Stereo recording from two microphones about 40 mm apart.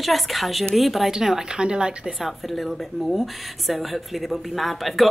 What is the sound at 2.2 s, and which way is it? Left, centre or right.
Speech, centre.